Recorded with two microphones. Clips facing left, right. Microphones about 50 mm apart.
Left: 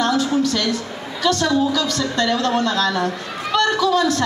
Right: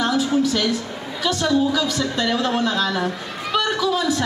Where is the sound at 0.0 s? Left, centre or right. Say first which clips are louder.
Left 1 dB; centre.